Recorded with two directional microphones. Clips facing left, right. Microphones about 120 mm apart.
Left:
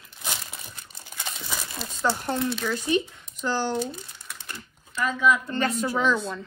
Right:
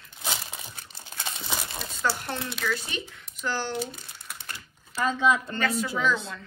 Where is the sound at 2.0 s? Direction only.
20° left (ahead or behind).